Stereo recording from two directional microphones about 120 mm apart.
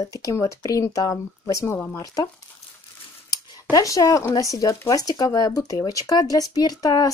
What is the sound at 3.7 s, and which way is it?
Speech, 30° left (ahead or behind).